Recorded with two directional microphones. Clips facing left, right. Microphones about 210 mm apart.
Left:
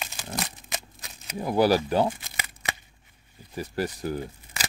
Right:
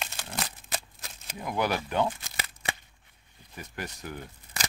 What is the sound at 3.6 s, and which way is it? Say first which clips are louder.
Speech: left 10 dB; 35° left (ahead or behind).